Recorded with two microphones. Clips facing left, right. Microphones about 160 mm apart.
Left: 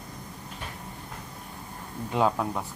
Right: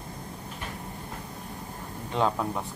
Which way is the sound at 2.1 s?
5° left (ahead or behind).